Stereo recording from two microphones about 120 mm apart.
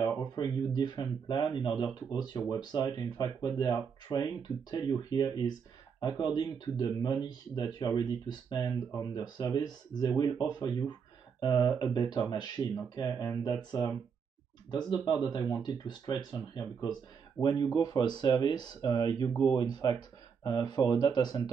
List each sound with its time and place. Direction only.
0.0 s speech: 35° left (ahead or behind)